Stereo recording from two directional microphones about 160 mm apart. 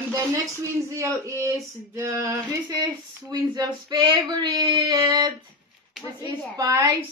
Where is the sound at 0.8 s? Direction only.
20° right (ahead or behind).